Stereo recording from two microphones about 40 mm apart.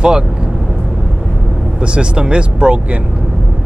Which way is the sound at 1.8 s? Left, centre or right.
Right.